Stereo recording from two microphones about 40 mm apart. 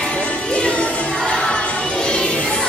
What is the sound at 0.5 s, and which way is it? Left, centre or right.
Music, left.